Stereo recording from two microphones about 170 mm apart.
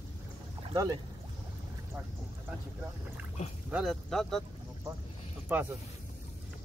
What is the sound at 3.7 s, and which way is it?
Speech, centre (ahead or behind).